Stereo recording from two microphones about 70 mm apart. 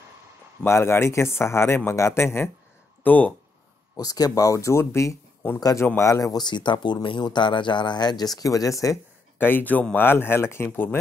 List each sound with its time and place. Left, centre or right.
0.7 s speech: left
3.0 s speech: left
3.9 s speech: left
6.3 s speech: left
8.4 s speech: left
9.4 s speech: left